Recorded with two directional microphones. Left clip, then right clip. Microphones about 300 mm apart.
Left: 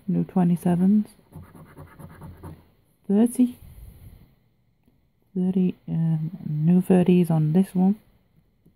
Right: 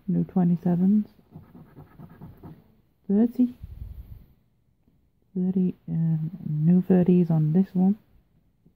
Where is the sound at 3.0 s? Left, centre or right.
Centre.